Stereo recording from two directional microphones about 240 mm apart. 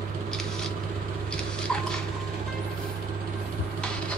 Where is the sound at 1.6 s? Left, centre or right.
Centre.